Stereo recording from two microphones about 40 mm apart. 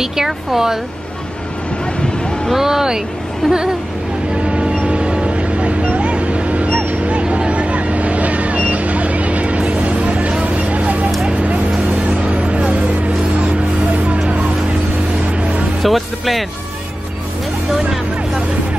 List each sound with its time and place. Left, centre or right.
0.0 s speech: centre
2.5 s speech: centre
4.4 s a sound: right
4.8 s vehicle: right
11.2 s music: right
12.3 s vehicle: right
13.5 s music: right
15.8 s speech: centre
17.7 s vehicle: centre